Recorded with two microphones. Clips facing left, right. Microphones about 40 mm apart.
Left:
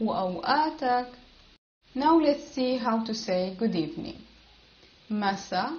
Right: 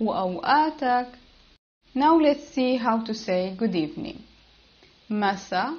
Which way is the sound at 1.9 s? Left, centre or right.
Right.